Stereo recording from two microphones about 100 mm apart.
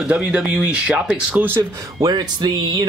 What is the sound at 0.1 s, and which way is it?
Speech, 10° right (ahead or behind).